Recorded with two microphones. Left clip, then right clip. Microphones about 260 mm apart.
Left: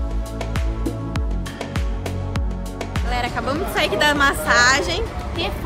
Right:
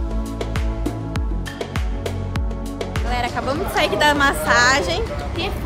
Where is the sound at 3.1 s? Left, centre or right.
Centre.